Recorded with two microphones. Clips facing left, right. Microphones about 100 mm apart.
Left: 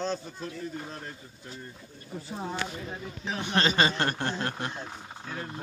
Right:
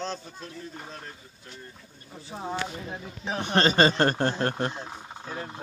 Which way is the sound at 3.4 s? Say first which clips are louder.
Right 4 dB; 45° right (ahead or behind).